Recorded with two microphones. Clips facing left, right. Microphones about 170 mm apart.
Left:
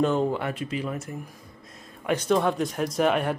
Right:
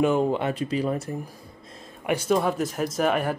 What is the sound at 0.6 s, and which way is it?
Speech, 35° right (ahead or behind).